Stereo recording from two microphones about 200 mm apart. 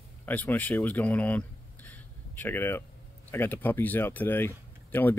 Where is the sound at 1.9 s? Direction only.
10° left (ahead or behind).